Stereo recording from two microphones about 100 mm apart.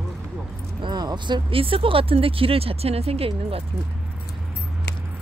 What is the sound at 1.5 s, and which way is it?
Speech, 65° right (ahead or behind).